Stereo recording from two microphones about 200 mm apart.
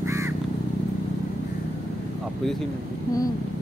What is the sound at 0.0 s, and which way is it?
Crow, 15° right (ahead or behind).